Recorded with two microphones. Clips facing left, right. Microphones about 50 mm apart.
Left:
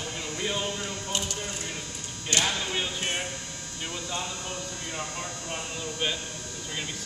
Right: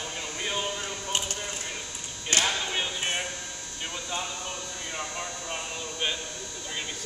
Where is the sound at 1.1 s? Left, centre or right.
Right.